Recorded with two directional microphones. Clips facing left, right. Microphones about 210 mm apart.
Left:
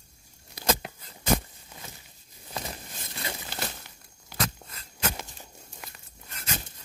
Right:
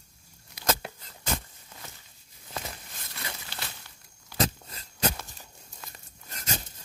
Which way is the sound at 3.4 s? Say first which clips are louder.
Left 6 dB; 45° left (ahead or behind).